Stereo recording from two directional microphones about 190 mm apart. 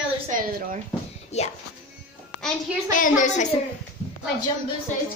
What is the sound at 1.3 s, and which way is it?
Speech, 35° left (ahead or behind).